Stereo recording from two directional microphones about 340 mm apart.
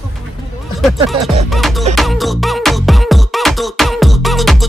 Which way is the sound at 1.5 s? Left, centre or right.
Centre.